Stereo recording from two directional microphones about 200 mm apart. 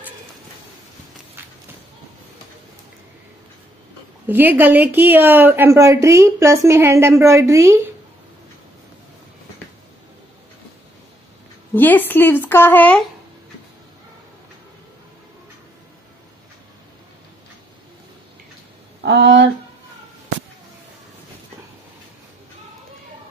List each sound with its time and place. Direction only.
4.3 s a woman's voice: 10° right (ahead or behind)
11.7 s speech: 10° left (ahead or behind)
19.0 s a sound: 60° right (ahead or behind)